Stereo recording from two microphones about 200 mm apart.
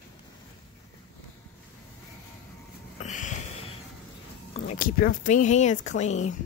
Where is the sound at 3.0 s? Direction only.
35° left (ahead or behind).